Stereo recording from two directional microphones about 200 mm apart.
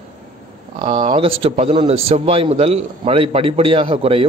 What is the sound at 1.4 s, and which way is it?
A man's voice, 30° right (ahead or behind).